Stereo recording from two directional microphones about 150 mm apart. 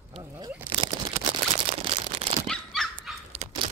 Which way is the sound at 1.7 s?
40° right (ahead or behind).